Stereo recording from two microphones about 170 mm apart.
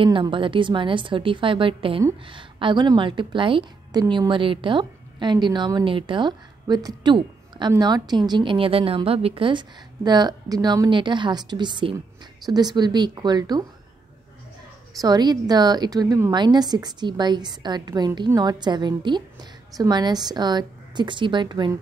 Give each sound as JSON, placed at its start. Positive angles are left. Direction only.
{"t": 0.0, "sound": "a woman's voice", "side_deg": -30}
{"t": 15.0, "sound": "a woman's voice", "side_deg": -25}